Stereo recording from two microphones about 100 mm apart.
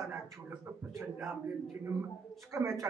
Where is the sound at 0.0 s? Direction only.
30° right (ahead or behind).